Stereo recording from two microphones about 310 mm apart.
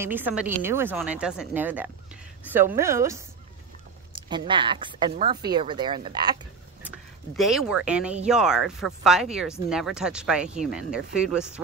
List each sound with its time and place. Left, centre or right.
0.0 s speech: centre
7.3 s speech: centre